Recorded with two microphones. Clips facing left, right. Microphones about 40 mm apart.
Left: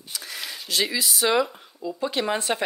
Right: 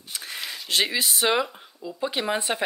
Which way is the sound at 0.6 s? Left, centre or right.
Right.